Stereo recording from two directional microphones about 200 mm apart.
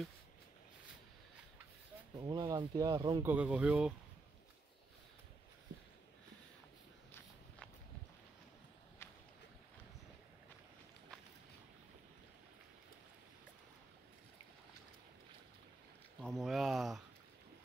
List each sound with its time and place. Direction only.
2.1 s speech: 20° right (ahead or behind)
3.3 s speech: 5° right (ahead or behind)
16.2 s speech: centre (ahead or behind)